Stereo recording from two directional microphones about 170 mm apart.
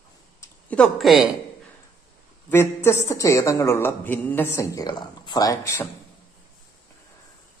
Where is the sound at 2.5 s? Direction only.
15° left (ahead or behind).